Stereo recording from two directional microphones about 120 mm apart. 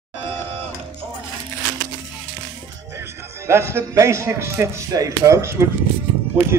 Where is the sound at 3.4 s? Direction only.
20° right (ahead or behind).